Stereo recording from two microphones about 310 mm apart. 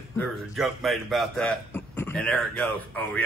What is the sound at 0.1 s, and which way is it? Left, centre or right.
A man's voice, centre.